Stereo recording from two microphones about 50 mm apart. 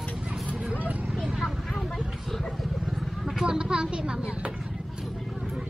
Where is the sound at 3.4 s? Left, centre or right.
Centre.